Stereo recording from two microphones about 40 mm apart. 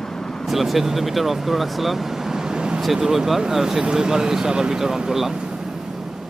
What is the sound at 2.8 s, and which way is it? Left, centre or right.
Speech, centre.